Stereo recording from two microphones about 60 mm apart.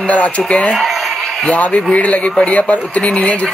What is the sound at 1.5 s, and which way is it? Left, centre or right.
Speech, centre.